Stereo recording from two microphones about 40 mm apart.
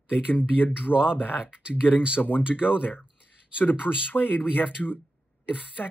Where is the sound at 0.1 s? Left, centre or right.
Left.